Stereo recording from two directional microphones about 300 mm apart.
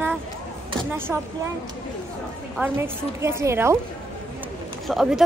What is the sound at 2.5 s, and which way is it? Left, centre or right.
A woman's voice, centre.